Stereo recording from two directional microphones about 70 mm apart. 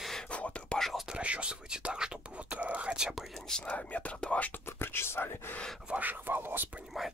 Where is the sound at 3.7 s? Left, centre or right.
Left.